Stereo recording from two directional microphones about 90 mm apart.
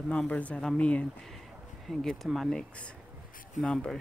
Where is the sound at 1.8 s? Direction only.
Centre (ahead or behind).